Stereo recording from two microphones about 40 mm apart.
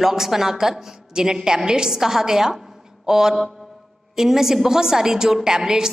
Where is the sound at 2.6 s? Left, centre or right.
Centre.